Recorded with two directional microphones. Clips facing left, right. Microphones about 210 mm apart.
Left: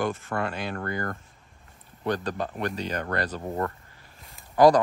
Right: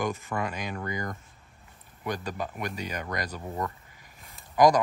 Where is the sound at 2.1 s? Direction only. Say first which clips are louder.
Left 4 dB; 10° right (ahead or behind).